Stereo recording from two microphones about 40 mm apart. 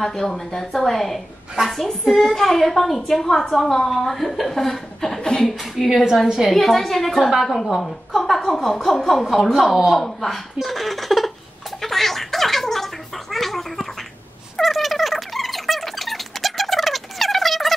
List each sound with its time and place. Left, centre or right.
0.0 s a woman's voice: centre
5.2 s speech: centre
5.8 s a woman's voice: centre
6.2 s a woman's voice: centre
6.5 s a woman's voice: centre
11.8 s gargling: centre
14.6 s a sound: centre